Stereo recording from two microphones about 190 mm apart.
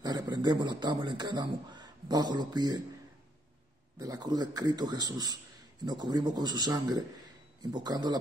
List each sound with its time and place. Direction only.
0.0 s speech: 20° right (ahead or behind)
4.0 s speech: 20° right (ahead or behind)